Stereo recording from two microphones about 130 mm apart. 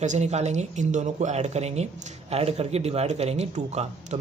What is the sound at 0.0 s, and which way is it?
Speech, 65° right (ahead or behind).